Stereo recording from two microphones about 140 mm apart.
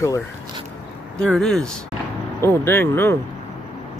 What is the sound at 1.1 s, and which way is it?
Speech, 5° left (ahead or behind).